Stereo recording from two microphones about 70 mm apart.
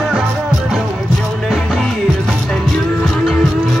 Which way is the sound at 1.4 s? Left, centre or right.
Centre.